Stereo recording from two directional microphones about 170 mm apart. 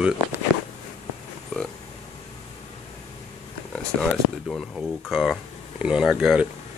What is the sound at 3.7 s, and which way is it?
Speech, 5° left (ahead or behind).